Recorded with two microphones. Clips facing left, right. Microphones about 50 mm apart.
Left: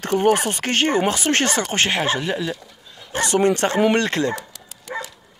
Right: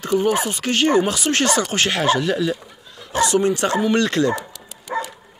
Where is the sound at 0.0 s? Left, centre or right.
Left.